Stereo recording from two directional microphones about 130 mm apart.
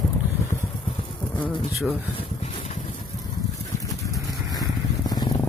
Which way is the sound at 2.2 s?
50° left (ahead or behind).